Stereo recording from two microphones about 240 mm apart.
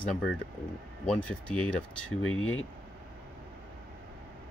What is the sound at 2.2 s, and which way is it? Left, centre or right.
Speech, left.